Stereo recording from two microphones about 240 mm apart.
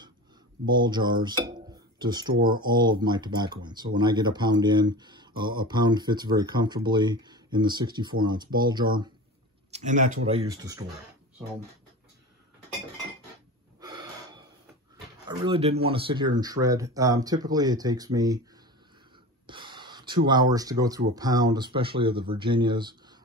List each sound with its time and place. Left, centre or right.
0.7 s speech: centre
9.7 s speech: right
13.7 s gasp: centre
15.2 s speech: right
19.4 s gasp: centre
21.1 s speech: centre